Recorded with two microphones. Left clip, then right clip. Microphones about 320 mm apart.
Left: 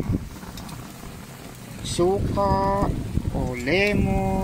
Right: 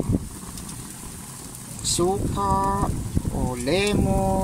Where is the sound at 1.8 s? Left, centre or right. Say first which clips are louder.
Left 1 dB; centre.